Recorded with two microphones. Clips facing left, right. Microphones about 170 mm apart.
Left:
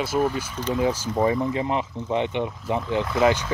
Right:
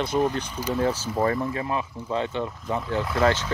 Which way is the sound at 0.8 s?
10° left (ahead or behind).